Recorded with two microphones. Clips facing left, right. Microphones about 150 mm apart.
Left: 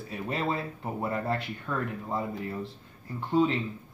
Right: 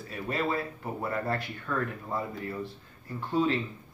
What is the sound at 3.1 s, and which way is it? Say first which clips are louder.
Speech: left 2 dB; 20° left (ahead or behind).